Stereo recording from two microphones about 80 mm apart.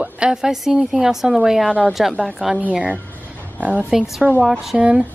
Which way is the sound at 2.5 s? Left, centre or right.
Centre.